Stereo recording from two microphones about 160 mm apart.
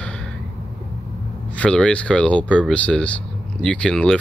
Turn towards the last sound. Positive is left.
turn(degrees=5)  # may be behind; listen again after turning